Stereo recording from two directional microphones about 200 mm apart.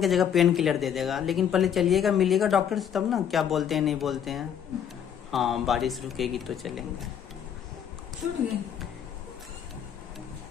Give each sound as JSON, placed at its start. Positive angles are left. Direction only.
{"t": 0.0, "sound": "speech", "side_deg": 0}